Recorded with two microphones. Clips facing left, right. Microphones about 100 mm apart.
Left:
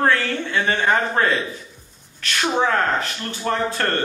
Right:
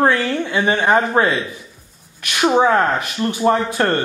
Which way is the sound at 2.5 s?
15° right (ahead or behind).